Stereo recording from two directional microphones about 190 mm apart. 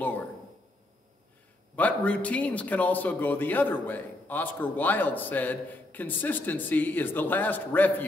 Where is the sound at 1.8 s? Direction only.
5° left (ahead or behind).